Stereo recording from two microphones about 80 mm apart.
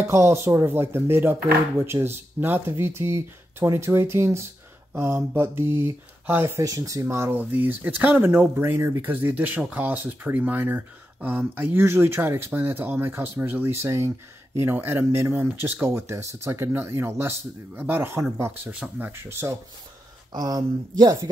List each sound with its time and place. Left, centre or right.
0.0 s speech: right
6.6 s speech: right
18.7 s speech: right
20.3 s speech: right